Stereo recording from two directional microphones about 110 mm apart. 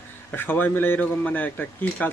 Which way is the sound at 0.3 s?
15° left (ahead or behind).